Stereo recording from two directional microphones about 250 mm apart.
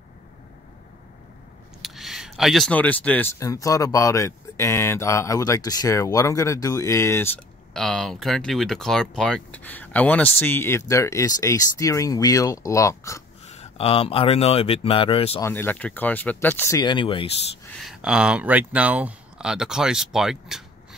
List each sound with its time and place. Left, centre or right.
1.8 s speech: centre
13.5 s speech: left
15.4 s speech: centre
17.7 s speech: centre